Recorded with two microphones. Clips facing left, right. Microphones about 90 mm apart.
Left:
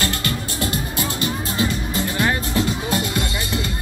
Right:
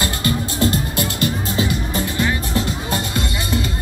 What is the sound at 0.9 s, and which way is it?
Music, 60° right (ahead or behind).